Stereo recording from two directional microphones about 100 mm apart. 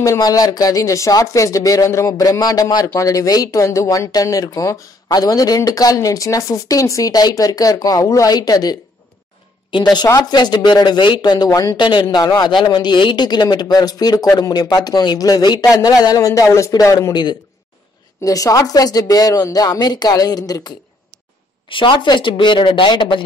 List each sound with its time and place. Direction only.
0.0 s speech: 35° left (ahead or behind)
10.0 s speech: 40° left (ahead or behind)
11.7 s speech: 50° left (ahead or behind)
17.1 s speech: 45° left (ahead or behind)
18.2 s speech: 35° left (ahead or behind)
21.6 s speech: 55° left (ahead or behind)